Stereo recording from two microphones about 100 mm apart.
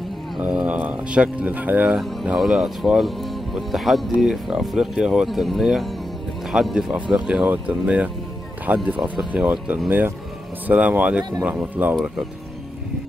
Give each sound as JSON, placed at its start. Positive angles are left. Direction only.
{"t": 0.4, "sound": "speech", "side_deg": -10}
{"t": 2.0, "sound": "speech", "side_deg": -5}